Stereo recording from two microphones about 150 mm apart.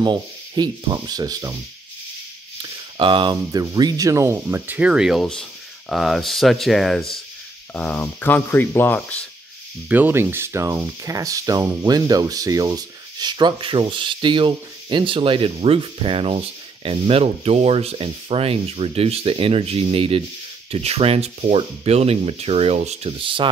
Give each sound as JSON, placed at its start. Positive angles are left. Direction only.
{"t": 0.0, "sound": "speech", "side_deg": -30}
{"t": 3.0, "sound": "speech", "side_deg": -35}
{"t": 9.8, "sound": "speech", "side_deg": -10}